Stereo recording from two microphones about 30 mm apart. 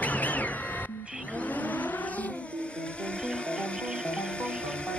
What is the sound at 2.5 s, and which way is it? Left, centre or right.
Music, left.